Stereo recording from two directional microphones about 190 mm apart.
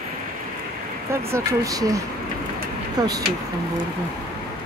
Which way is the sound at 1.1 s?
15° right (ahead or behind).